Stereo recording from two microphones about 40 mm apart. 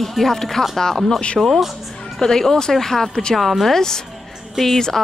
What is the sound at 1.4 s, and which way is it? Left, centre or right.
Speech, centre.